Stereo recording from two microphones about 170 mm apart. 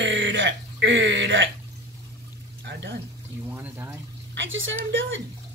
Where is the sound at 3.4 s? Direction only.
10° right (ahead or behind).